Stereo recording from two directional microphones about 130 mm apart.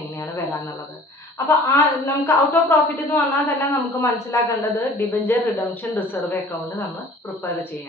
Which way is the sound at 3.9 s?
25° left (ahead or behind).